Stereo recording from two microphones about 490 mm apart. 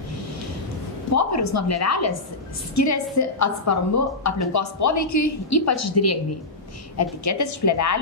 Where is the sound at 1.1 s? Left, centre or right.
Left.